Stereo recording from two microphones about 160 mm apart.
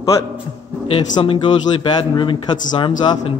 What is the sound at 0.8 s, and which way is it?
A man's voice, 35° left (ahead or behind).